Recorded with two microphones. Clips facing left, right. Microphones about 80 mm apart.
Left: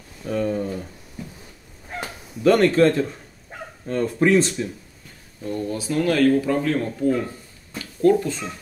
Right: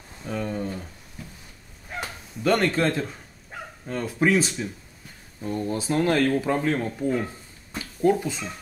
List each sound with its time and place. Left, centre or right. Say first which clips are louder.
0.3 s speech: left 6 dB; centre
0.7 s a sound: left 4 dB; centre
2.0 s bow-wow: left 2 dB; centre
3.8 s speech: left 4 dB; centre
5.7 s speech: left 1 dB; right
7.7 s a sound: left 4 dB; centre